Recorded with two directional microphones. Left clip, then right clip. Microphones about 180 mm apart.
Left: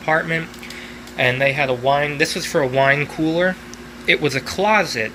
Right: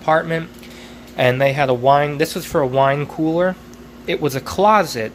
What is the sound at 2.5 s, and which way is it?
Speech, 15° right (ahead or behind).